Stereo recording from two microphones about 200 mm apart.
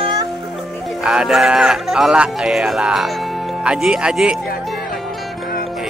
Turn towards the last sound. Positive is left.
turn(degrees=-5)  # may be behind; listen again after turning